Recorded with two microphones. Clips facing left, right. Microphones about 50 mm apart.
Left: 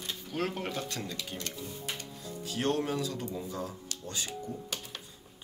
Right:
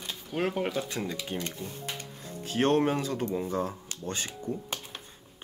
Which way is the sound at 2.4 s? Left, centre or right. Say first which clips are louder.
Right 6 dB; right.